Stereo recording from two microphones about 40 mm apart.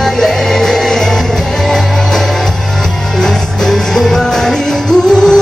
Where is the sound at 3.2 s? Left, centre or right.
Centre.